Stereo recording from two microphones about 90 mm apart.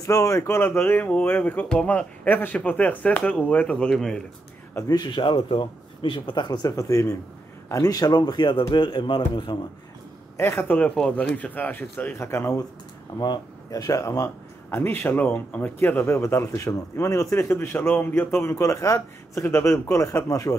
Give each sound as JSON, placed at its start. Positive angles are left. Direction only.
{"t": 0.0, "sound": "speech", "side_deg": 40}
{"t": 4.9, "sound": "speech", "side_deg": 60}
{"t": 6.7, "sound": "speech", "side_deg": 35}
{"t": 7.7, "sound": "speech", "side_deg": 45}
{"t": 10.3, "sound": "speech", "side_deg": 25}
{"t": 11.0, "sound": "speech", "side_deg": 10}
{"t": 12.2, "sound": "speech", "side_deg": 30}
{"t": 13.2, "sound": "speech", "side_deg": 45}
{"t": 14.8, "sound": "speech", "side_deg": 25}